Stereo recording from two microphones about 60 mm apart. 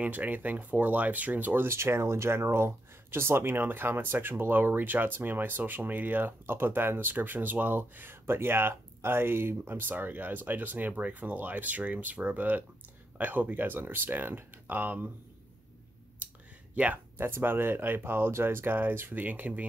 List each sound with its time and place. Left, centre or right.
0.0 s speech: right
1.7 s speech: right
16.7 s speech: right
17.2 s speech: right